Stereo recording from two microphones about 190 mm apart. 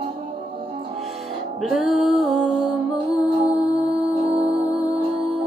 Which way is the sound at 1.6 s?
Centre (ahead or behind).